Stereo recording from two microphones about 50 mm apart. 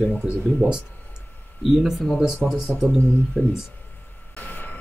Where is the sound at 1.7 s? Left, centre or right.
Centre.